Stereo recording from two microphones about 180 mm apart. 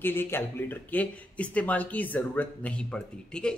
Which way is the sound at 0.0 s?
10° left (ahead or behind).